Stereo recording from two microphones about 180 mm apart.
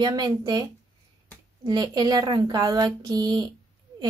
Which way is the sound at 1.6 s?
25° right (ahead or behind).